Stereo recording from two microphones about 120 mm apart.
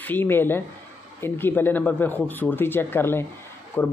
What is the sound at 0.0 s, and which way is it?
A man's voice, 15° left (ahead or behind).